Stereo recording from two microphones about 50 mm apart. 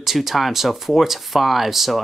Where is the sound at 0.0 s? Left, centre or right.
Centre.